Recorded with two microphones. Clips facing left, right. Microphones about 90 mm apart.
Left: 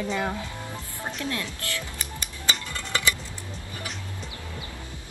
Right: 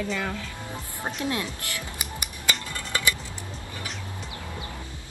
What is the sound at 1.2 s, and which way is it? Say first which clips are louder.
Speech: right 3 dB; 20° right (ahead or behind).